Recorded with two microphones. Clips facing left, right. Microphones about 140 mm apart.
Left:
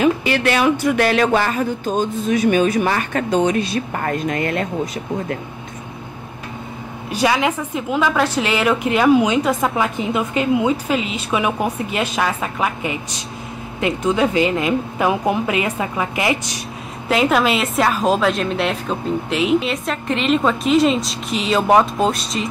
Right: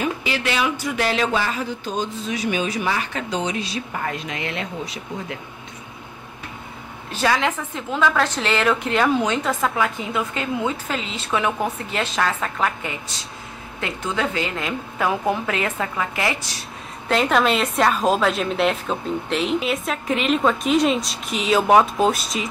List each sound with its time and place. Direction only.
0.0 s speech: 60° left (ahead or behind)
7.1 s a woman's voice: 10° left (ahead or behind)
17.1 s a woman's voice: 5° left (ahead or behind)